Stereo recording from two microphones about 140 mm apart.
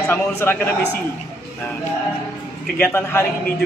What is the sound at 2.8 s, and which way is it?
Speech, 15° left (ahead or behind).